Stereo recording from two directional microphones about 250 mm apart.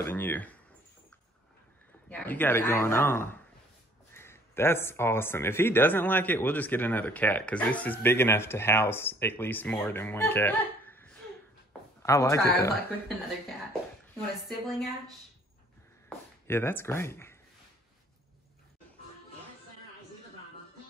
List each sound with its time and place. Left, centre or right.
0.0 s speech: centre
2.0 s speech: centre
14.5 s a woman's voice: centre
16.4 s speech: centre